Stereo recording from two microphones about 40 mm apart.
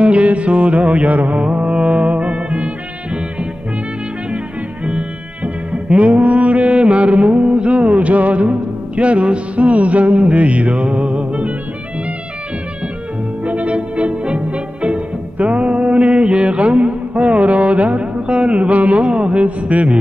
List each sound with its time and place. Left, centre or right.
0.0 s music: right
4.8 s music: right
13.4 s music: right